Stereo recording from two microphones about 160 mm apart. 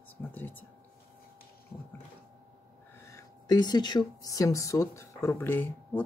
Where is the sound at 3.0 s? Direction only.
20° left (ahead or behind).